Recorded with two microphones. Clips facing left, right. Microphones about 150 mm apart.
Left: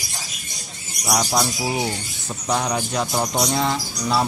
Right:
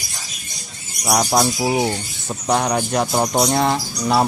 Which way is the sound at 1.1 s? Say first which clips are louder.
Right 4 dB; 50° right (ahead or behind).